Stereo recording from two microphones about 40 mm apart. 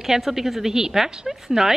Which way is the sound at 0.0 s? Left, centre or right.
Centre.